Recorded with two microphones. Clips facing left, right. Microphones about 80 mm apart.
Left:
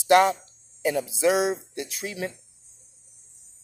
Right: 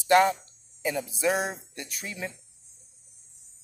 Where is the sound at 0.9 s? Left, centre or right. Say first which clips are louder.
Left 5 dB; left.